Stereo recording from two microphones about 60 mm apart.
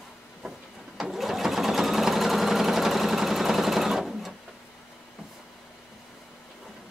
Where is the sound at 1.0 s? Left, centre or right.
Centre.